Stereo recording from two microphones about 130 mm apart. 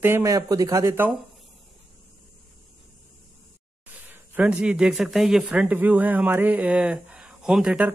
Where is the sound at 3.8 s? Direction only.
15° right (ahead or behind).